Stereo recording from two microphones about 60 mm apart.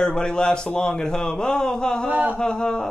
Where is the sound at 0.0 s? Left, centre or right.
Centre.